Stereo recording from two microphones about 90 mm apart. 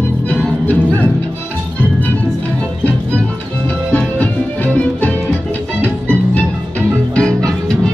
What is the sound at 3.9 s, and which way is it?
Music, 20° left (ahead or behind).